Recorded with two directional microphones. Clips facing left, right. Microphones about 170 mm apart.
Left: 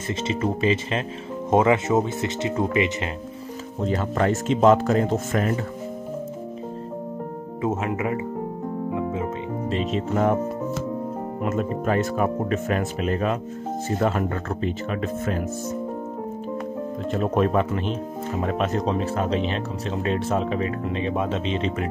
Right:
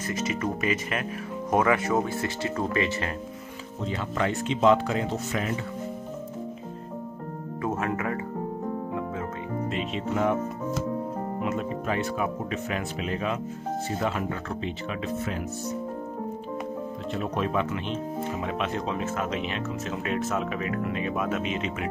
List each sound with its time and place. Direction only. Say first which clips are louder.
0.1 s speech: left 4 dB; 25° left (ahead or behind)
3.8 s speech: left 6 dB; 45° left (ahead or behind)
7.6 s speech: left 4 dB; 20° left (ahead or behind)
8.9 s music: left 5 dB; 15° left (ahead or behind)
9.7 s speech: left 7 dB; 35° left (ahead or behind)
11.4 s speech: left 6 dB; 50° left (ahead or behind)
17.1 s speech: left 7 dB; 50° left (ahead or behind); by 21.8 s 30° left (ahead or behind)